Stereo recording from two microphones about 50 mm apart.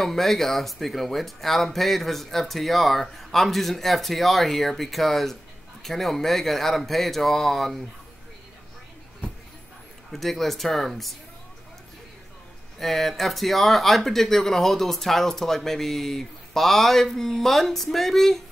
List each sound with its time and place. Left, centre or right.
0.0 s speech: centre
10.1 s speech: centre
12.7 s speech: centre